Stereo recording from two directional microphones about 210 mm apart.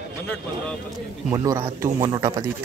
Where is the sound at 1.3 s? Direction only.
15° right (ahead or behind).